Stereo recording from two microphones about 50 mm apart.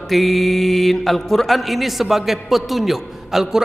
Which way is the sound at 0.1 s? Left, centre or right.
Centre.